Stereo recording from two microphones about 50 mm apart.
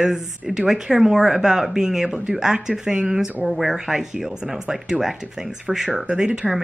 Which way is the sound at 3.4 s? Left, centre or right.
Centre.